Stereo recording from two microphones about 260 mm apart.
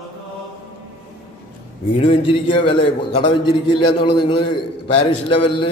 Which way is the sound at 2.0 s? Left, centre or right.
Left.